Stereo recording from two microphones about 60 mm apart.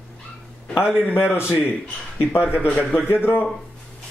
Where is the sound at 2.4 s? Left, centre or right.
Right.